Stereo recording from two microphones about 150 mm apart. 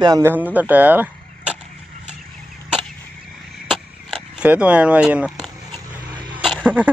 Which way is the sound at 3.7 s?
5° right (ahead or behind).